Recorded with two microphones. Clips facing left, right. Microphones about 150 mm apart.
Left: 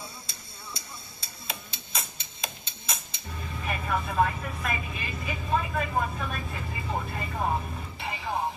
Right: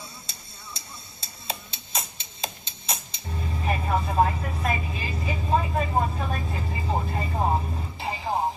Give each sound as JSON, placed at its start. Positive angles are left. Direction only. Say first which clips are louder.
{"t": 1.5, "sound": "music", "louder": "right 4 dB", "side_deg": -30}